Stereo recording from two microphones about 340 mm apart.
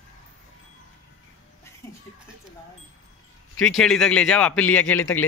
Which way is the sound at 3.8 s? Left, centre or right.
Centre.